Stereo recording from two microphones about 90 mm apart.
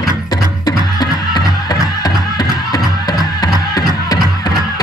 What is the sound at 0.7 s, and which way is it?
Music, 50° left (ahead or behind).